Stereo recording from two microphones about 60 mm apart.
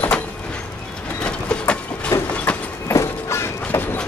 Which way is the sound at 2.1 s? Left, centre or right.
Left.